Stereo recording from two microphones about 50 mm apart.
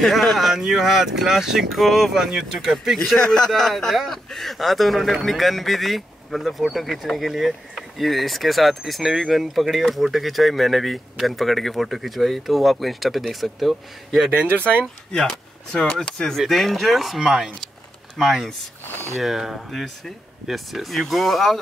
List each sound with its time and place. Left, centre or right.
0.0 s a man's voice: centre
3.2 s a man's voice: centre
14.4 s speech: right
15.1 s a man's voice: centre
16.3 s speech: centre